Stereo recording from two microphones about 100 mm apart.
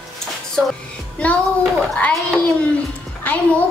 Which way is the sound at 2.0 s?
10° left (ahead or behind).